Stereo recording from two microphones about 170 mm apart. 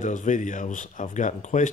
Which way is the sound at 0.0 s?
45° left (ahead or behind).